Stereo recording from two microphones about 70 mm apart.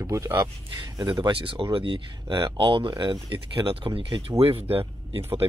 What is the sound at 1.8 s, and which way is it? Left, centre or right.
Speech, right.